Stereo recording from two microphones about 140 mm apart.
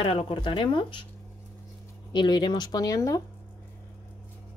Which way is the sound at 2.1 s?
30° left (ahead or behind).